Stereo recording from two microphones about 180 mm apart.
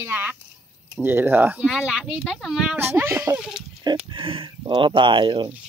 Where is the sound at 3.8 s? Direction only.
25° right (ahead or behind).